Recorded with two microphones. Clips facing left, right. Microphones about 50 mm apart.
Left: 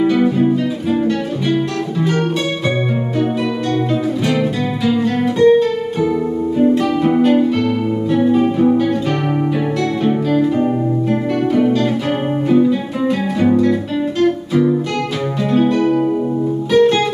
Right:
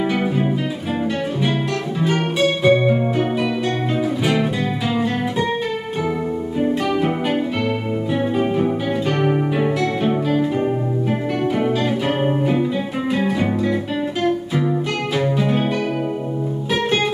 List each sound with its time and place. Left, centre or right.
0.0 s guitar: centre
0.9 s music: centre
4.3 s music: centre
6.6 s music: centre
10.0 s music: centre
13.5 s music: centre